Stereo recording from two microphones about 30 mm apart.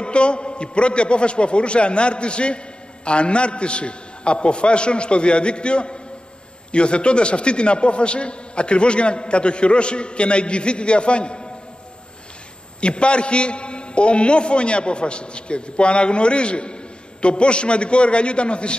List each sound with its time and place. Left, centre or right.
0.0 s a man's voice: left
12.8 s a man's voice: left